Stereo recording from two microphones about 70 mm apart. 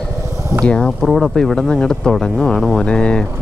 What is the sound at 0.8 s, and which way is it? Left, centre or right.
Speech, centre.